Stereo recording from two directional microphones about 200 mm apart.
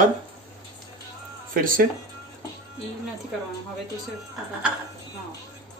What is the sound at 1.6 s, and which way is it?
Speech, 45° right (ahead or behind).